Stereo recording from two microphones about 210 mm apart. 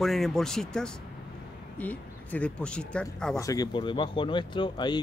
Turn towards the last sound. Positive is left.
turn(degrees=20)  # may be behind; listen again after turning